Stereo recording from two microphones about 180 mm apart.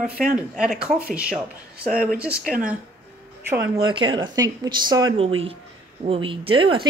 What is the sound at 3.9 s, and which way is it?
Speech, 25° right (ahead or behind).